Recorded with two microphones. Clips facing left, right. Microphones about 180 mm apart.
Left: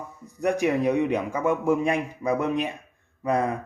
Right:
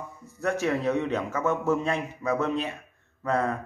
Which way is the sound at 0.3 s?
15° left (ahead or behind).